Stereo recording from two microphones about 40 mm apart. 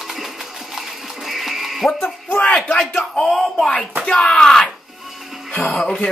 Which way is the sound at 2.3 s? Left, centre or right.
Left.